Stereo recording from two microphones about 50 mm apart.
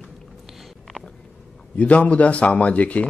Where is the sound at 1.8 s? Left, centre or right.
Left.